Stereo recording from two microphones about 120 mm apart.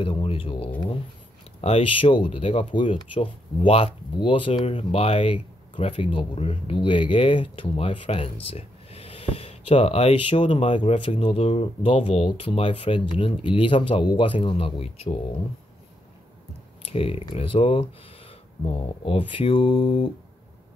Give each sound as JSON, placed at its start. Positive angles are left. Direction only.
{"t": 0.0, "sound": "speech", "side_deg": 50}
{"t": 16.8, "sound": "speech", "side_deg": 55}